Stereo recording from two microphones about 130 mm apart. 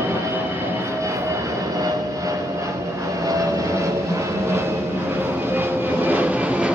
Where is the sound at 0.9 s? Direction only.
25° right (ahead or behind).